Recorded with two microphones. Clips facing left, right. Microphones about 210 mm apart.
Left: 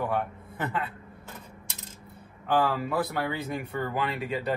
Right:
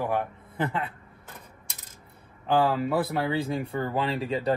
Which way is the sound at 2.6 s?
25° right (ahead or behind).